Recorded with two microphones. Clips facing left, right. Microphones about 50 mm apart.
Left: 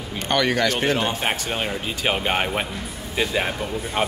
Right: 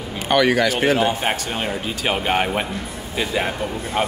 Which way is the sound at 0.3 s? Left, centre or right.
Centre.